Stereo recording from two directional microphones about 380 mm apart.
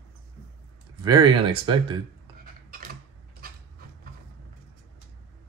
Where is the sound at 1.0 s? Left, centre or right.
Centre.